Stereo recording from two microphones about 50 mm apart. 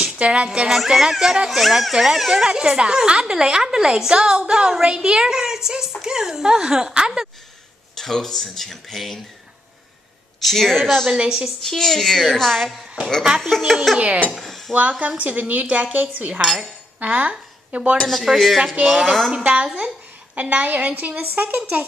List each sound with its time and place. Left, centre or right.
0.0 s music: right
0.7 s a child's voice: centre
8.0 s speech: centre
10.4 s a woman's voice: centre
11.1 s a child's voice: centre
11.6 s speech: centre
12.6 s speech: centre
13.9 s speech: right
14.3 s dishes: centre
14.7 s a woman's voice: right
17.3 s a sound: right
18.1 s speech: centre
19.3 s a woman's voice: right